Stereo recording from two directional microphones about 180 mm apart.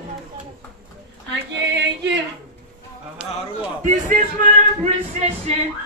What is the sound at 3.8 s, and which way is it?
Speech, 45° right (ahead or behind).